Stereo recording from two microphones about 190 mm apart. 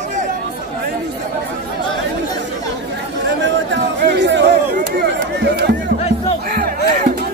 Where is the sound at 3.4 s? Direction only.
65° right (ahead or behind).